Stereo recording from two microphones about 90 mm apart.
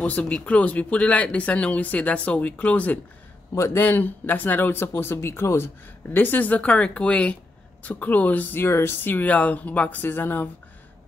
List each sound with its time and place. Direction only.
0.0 s speech: 15° left (ahead or behind)
3.5 s speech: 30° left (ahead or behind)